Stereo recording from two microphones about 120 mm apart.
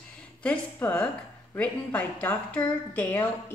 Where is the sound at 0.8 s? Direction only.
15° left (ahead or behind).